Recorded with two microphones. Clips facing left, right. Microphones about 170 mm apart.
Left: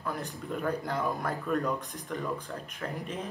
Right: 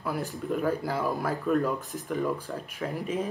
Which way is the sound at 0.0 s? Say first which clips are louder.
Right 4 dB; 5° right (ahead or behind).